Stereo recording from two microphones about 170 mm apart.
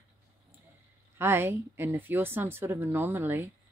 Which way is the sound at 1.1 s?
15° right (ahead or behind).